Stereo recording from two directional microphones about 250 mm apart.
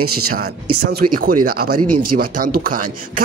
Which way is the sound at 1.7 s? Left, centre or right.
Right.